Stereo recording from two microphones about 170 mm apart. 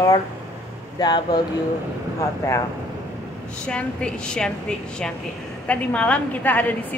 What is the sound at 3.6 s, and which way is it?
A woman's voice, 5° left (ahead or behind).